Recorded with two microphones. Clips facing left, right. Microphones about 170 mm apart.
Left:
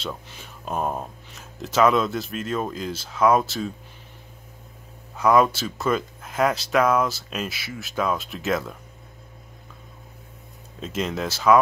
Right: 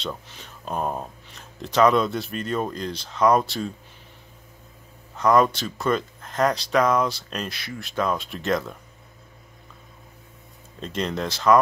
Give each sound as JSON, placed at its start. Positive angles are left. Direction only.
{"t": 0.0, "sound": "speech", "side_deg": 5}
{"t": 5.1, "sound": "speech", "side_deg": 5}
{"t": 10.8, "sound": "speech", "side_deg": 5}